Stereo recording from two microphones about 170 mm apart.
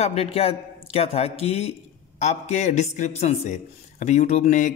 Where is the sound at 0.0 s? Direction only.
35° left (ahead or behind).